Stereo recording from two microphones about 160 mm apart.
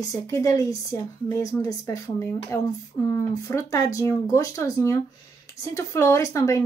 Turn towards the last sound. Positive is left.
turn(degrees=20)  # may be behind; listen again after turning